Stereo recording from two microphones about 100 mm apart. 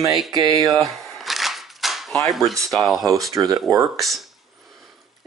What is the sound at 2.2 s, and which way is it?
Speech, centre (ahead or behind).